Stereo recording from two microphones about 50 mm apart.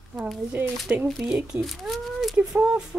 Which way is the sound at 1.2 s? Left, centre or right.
Right.